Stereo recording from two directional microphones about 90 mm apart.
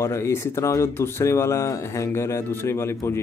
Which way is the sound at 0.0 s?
30° left (ahead or behind).